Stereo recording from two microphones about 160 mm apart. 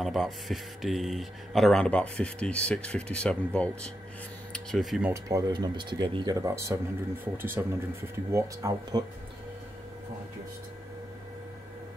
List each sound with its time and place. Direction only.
0.0 s speech: centre (ahead or behind)
5.1 s speech: 25° right (ahead or behind)